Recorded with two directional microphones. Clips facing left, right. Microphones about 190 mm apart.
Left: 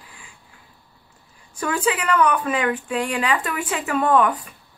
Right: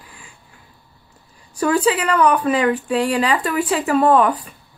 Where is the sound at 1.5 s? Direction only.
35° right (ahead or behind).